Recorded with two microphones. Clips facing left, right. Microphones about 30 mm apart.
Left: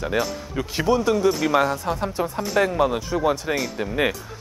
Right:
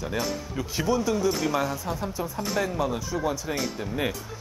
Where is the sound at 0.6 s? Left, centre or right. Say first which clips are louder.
Left 5 dB; left.